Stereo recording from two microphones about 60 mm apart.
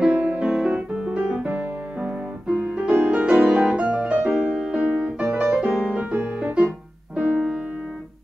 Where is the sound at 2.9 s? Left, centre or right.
Right.